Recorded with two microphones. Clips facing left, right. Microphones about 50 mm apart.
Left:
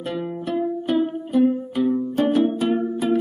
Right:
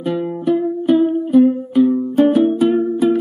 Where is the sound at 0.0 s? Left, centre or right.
Centre.